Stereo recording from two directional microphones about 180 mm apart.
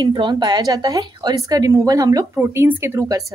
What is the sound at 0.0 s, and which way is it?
A woman's voice, 25° right (ahead or behind).